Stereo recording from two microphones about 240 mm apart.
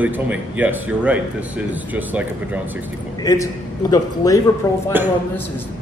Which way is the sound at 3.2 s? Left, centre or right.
Centre.